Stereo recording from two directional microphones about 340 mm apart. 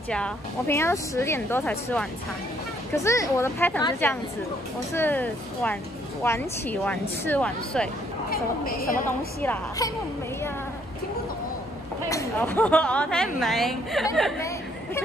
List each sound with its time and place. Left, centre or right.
0.1 s a woman's voice: centre
8.3 s a woman's voice: left
9.4 s a woman's voice: centre
12.1 s speech: centre